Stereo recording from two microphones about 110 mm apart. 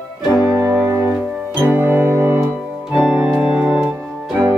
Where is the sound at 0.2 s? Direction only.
Centre (ahead or behind).